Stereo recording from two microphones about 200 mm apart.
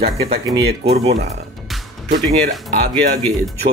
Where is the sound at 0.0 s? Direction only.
30° right (ahead or behind).